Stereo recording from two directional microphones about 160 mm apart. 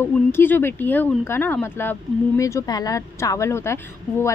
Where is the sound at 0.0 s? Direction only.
15° left (ahead or behind).